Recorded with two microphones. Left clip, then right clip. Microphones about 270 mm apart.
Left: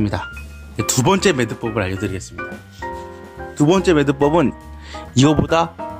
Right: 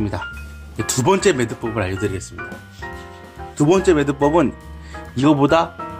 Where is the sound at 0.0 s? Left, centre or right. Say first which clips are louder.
Left 2 dB; left.